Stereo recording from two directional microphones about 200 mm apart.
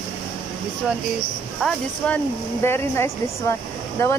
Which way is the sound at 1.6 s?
Centre (ahead or behind).